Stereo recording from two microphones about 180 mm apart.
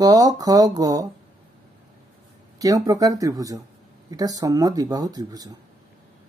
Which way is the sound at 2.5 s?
20° right (ahead or behind).